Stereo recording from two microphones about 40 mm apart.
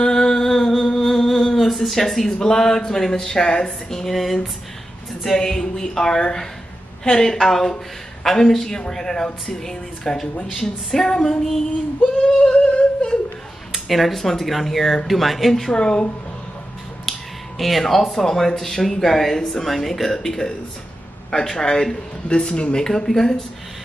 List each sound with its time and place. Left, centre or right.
0.0 s a sound: centre
1.9 s speech: centre
12.2 s speech: centre
12.5 s a sound: left
13.8 s speech: centre
15.7 s speech: left
17.6 s speech: centre
21.5 s speech: centre
22.8 s speech: centre